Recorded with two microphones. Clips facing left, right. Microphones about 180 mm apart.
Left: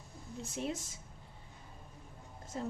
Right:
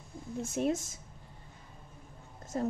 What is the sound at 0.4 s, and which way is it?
Speech, 45° right (ahead or behind).